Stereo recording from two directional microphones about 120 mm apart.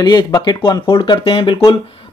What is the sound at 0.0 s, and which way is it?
Speech, 35° left (ahead or behind).